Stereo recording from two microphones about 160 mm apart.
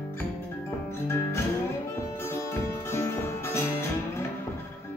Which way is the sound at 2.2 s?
15° left (ahead or behind).